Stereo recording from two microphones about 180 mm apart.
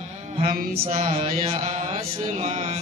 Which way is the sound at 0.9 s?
35° right (ahead or behind).